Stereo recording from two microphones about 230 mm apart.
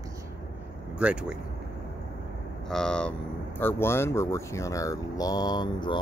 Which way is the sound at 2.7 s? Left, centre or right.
Centre.